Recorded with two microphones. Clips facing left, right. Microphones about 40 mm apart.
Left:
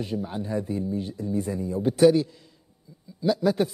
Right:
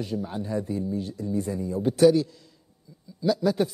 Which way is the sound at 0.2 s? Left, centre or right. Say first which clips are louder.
Even; centre.